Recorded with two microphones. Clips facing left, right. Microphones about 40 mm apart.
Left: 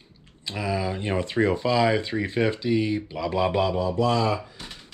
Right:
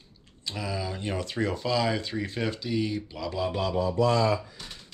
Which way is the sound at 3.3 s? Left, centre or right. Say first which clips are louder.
Left 6 dB; left.